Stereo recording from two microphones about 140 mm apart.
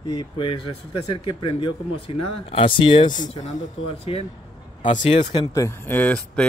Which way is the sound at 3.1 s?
60° left (ahead or behind).